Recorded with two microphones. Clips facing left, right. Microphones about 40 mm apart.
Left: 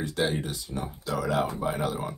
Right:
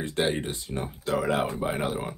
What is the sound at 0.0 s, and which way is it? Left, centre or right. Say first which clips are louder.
Speech: right 1 dB; right.